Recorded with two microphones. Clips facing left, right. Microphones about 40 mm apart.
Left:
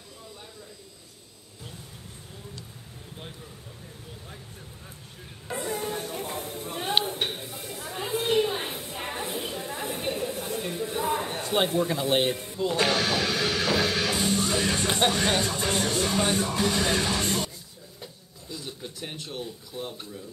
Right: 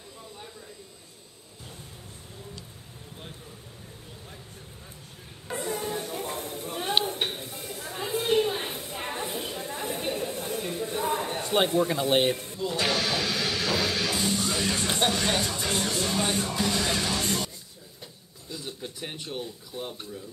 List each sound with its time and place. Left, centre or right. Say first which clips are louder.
5.5 s a sound: even; centre
12.7 s speech: left 2 dB; left
13.1 s music: left 2 dB; left
15.1 s speech: left 2 dB; left
18.0 s a sound: left 2 dB; centre
19.4 s speech: left 1 dB; centre